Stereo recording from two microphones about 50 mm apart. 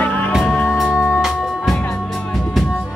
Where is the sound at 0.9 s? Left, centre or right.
Centre.